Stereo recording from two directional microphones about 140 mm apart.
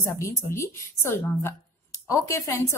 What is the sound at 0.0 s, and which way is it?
A woman's voice, 20° left (ahead or behind).